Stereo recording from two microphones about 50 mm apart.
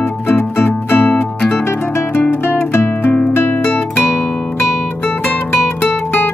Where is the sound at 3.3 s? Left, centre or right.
Left.